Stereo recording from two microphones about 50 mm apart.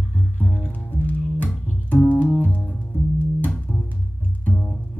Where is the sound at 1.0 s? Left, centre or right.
Left.